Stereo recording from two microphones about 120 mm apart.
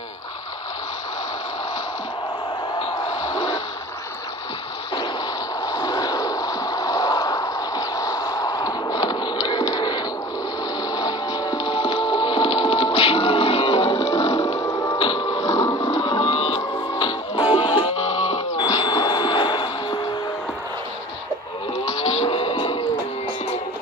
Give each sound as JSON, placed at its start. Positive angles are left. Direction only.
{"t": 3.2, "sound": "a sound", "side_deg": 30}
{"t": 5.7, "sound": "a sound", "side_deg": 30}
{"t": 11.0, "sound": "music", "side_deg": 30}
{"t": 11.7, "sound": "music", "side_deg": 50}
{"t": 14.6, "sound": "a sound", "side_deg": 25}
{"t": 15.0, "sound": "music", "side_deg": 50}
{"t": 15.2, "sound": "music", "side_deg": 30}
{"t": 16.2, "sound": "cattle", "side_deg": 55}
{"t": 17.0, "sound": "music", "side_deg": 45}
{"t": 18.1, "sound": "wail", "side_deg": 60}
{"t": 18.6, "sound": "a sound", "side_deg": 40}
{"t": 21.8, "sound": "vehicle", "side_deg": 55}